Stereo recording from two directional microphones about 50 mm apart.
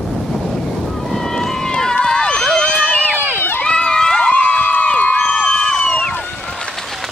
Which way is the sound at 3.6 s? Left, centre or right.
Centre.